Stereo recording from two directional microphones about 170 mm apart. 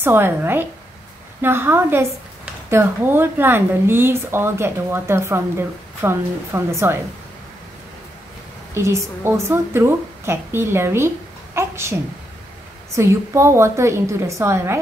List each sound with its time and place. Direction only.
0.0 s speech: 10° right (ahead or behind)
8.7 s speech: 15° right (ahead or behind)